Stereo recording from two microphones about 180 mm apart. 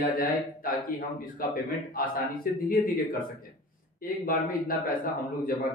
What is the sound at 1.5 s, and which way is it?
A man's voice, 50° left (ahead or behind).